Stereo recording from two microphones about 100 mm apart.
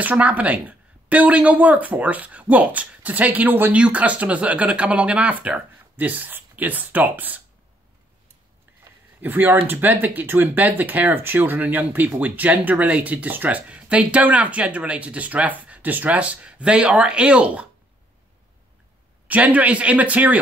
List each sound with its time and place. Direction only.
0.0 s speech: 15° right (ahead or behind)
9.2 s speech: 20° right (ahead or behind)
19.2 s speech: 15° right (ahead or behind)